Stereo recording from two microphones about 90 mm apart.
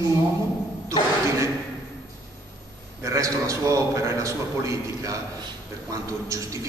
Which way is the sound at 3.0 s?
35° right (ahead or behind).